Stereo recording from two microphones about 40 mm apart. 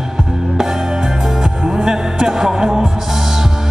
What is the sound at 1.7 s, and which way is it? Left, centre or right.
Music, centre.